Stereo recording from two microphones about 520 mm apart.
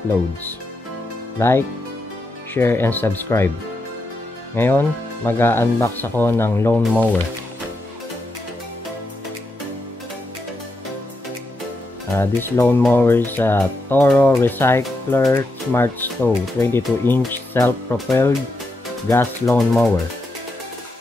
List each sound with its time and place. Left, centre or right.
1.4 s speech: centre
4.6 s speech: centre
12.2 s speech: centre